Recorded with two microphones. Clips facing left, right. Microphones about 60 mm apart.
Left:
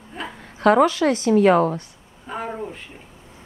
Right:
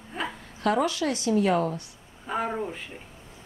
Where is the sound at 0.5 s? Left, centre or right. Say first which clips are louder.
Left 9 dB; left.